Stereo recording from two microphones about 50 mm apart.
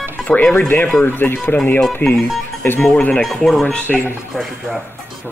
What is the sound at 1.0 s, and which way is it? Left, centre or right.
Speech, left.